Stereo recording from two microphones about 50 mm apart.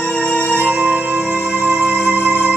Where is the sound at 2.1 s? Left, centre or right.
Right.